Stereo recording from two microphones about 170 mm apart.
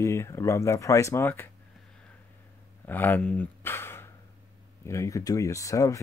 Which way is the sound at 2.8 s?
10° left (ahead or behind).